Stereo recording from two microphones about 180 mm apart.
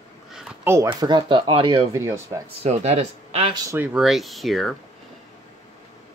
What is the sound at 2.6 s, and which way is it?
Speech, 40° right (ahead or behind).